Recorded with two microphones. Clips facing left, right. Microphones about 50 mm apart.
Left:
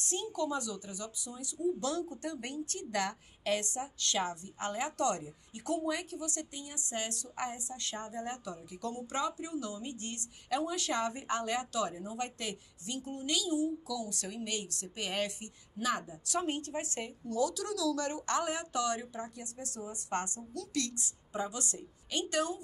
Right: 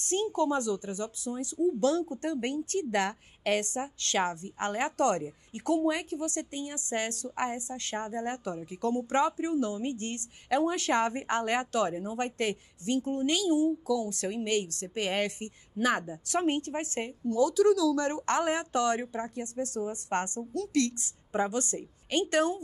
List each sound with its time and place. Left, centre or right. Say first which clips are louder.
0.0 s speech: right 7 dB; right